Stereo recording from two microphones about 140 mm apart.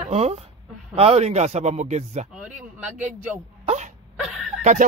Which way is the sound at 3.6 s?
55° right (ahead or behind).